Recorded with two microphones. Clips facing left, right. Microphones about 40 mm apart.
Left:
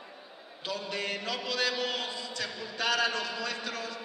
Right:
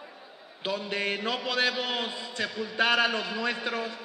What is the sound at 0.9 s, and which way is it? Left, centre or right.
A man's voice, right.